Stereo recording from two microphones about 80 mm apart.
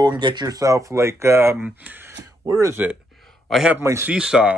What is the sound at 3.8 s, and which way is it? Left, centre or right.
Speech, right.